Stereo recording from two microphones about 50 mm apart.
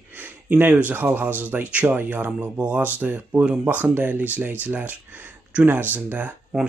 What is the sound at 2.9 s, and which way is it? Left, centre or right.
Speech, right.